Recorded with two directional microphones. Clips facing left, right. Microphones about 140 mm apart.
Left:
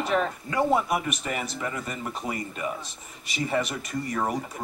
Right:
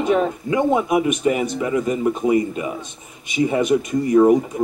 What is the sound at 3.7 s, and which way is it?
Speech, 20° right (ahead or behind).